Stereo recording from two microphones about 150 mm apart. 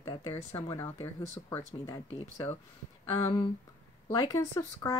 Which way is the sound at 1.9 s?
20° left (ahead or behind).